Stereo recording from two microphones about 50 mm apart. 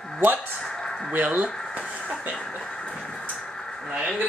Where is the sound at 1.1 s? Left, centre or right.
Right.